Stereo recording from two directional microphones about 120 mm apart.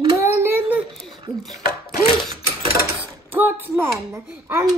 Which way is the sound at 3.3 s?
15° right (ahead or behind).